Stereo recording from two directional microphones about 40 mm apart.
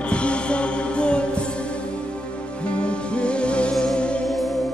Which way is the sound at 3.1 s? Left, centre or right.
Left.